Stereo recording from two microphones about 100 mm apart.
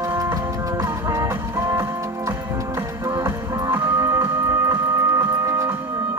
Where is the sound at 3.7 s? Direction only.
20° right (ahead or behind).